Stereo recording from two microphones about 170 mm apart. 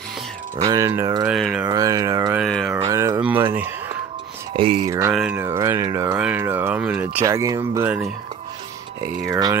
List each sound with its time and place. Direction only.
0.7 s a sound: 20° right (ahead or behind)
1.2 s speech: centre (ahead or behind)
1.7 s a sound: 20° right (ahead or behind)
2.3 s speech: centre (ahead or behind)
2.9 s a sound: 20° right (ahead or behind)
3.2 s speech: 10° right (ahead or behind)
4.6 s music: 30° right (ahead or behind)
4.8 s speech: 15° right (ahead or behind)
9.3 s speech: 20° right (ahead or behind)